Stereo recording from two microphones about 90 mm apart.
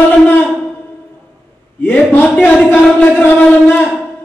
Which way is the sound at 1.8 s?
20° left (ahead or behind).